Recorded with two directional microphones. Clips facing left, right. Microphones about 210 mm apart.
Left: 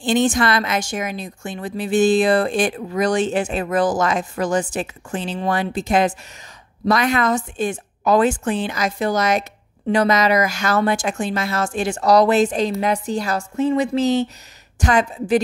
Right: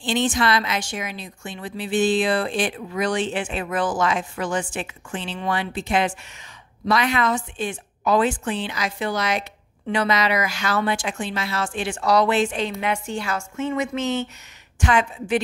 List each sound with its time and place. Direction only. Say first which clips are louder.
0.0 s a woman's voice: left 4 dB; 45° left (ahead or behind)